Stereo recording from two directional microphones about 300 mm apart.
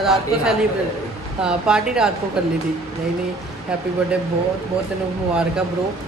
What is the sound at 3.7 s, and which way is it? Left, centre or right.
Speech, centre.